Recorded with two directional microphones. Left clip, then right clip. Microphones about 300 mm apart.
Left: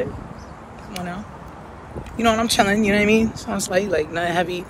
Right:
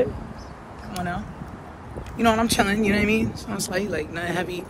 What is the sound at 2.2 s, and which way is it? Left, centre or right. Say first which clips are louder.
Speech: left 3 dB; centre.